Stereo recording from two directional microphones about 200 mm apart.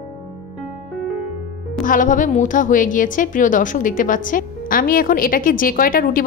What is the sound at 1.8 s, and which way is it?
A woman's voice, 40° left (ahead or behind).